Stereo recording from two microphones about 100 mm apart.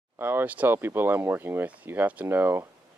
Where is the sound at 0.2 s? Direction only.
25° right (ahead or behind).